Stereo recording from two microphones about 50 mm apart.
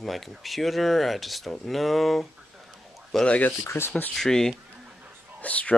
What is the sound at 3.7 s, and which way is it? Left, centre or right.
Speech, left.